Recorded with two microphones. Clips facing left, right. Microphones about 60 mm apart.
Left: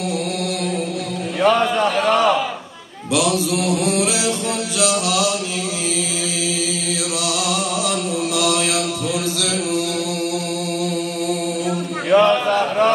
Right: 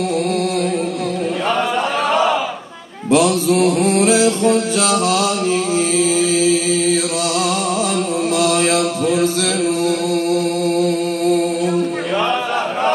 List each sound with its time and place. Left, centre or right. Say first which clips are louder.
2.1 s crowd: right 2 dB; centre
3.1 s mantra: right 5 dB; right
6.1 s chant: right 9 dB; right
8.4 s mantra: right 4 dB; right
12.1 s a sound: left 8 dB; centre